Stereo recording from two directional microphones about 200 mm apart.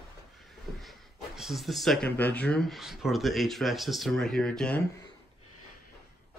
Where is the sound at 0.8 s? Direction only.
Centre (ahead or behind).